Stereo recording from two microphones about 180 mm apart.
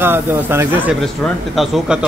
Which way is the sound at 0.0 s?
10° right (ahead or behind).